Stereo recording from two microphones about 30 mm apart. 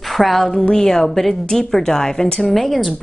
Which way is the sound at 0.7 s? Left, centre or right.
Centre.